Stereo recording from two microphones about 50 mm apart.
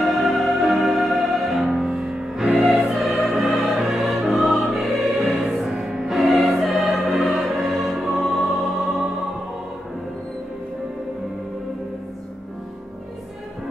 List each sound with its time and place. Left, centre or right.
0.0 s music: centre